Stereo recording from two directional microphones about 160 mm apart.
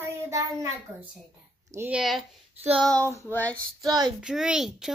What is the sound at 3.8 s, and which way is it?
Speech, 25° right (ahead or behind).